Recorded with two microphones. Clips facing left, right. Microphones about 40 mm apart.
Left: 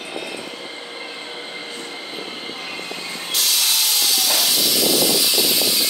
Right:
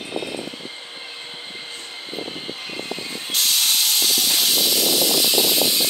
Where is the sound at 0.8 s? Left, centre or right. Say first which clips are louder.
Left 4 dB; left.